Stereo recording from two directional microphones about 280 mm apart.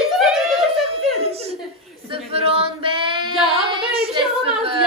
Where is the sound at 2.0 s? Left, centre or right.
Right.